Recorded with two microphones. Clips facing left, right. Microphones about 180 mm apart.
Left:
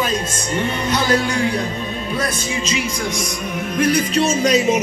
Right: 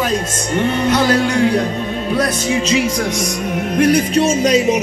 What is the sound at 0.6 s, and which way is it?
Music, 65° right (ahead or behind).